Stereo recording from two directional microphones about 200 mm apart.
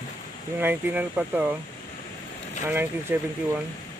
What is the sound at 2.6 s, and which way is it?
Speech, 10° right (ahead or behind).